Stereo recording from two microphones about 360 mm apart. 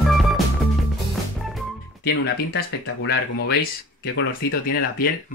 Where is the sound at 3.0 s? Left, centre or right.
Left.